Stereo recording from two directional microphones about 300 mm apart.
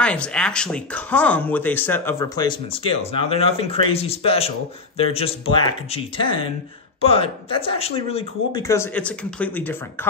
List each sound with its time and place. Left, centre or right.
0.0 s speech: centre